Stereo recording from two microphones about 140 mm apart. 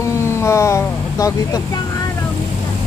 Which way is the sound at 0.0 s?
20° left (ahead or behind).